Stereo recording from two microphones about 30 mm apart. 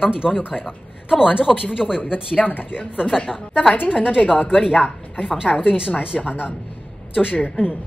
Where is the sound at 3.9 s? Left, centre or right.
Right.